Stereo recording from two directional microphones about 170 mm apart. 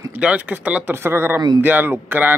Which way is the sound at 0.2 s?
10° right (ahead or behind).